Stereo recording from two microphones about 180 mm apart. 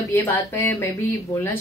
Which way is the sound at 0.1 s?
10° left (ahead or behind).